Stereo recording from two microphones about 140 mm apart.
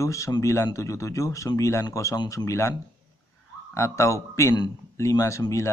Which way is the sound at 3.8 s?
20° left (ahead or behind).